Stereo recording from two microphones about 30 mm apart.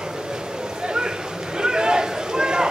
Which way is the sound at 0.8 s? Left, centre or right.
Right.